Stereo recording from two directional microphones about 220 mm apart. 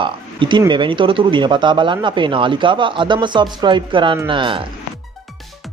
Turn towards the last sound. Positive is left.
turn(degrees=-25)  # may be behind; listen again after turning